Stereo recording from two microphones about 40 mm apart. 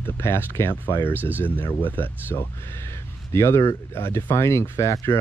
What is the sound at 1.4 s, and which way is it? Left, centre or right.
Speech, left.